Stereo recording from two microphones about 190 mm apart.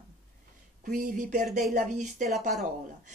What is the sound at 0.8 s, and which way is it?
Speech, 45° right (ahead or behind).